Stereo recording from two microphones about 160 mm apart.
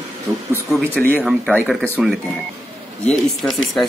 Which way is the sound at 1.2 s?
Centre (ahead or behind).